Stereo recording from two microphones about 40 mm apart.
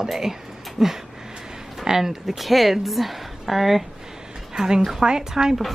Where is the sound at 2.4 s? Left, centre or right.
Centre.